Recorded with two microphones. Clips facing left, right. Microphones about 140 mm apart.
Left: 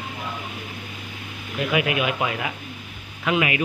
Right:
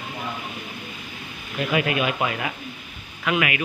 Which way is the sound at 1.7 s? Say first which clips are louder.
Even; 15° left (ahead or behind).